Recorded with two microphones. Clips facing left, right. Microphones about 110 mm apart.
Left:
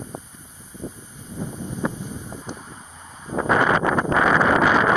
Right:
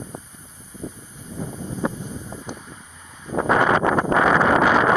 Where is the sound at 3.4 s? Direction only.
35° right (ahead or behind).